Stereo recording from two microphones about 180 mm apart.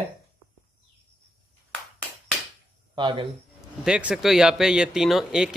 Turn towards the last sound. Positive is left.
turn(degrees=-5)  # may be behind; listen again after turning